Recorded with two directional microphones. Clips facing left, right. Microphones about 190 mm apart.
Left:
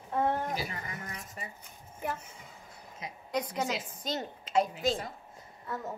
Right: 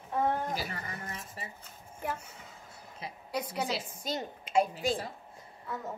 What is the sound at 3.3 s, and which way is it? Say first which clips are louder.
A woman's voice: left 1 dB; 10° right (ahead or behind).